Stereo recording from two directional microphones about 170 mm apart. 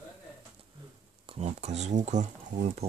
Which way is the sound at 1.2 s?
35° right (ahead or behind).